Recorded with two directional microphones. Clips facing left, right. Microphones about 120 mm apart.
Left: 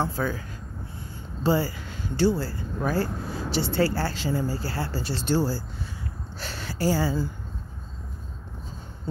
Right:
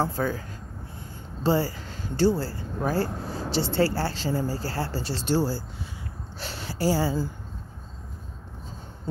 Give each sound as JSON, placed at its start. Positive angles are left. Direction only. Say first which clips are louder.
{"t": 0.0, "sound": "speech", "louder": "right 1 dB", "side_deg": -40}